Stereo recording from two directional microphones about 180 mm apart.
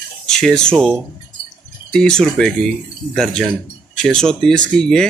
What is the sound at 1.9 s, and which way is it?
Speech, 5° left (ahead or behind).